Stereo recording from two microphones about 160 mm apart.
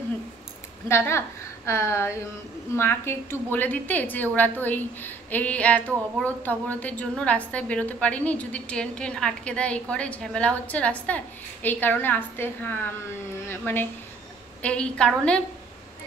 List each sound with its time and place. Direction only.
0.8 s a woman's voice: 15° left (ahead or behind)